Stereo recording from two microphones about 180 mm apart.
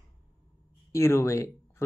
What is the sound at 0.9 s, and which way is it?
Speech, 15° left (ahead or behind).